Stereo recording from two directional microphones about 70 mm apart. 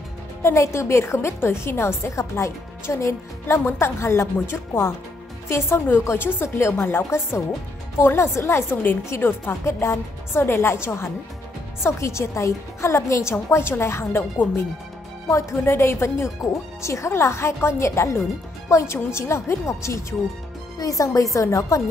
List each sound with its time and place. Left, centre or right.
0.4 s a woman's voice: left
15.2 s a woman's voice: left
20.8 s speech: left